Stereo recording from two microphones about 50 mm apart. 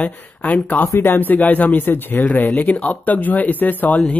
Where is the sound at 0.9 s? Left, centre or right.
Left.